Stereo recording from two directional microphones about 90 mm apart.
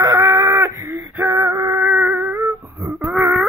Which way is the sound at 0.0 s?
35° right (ahead or behind).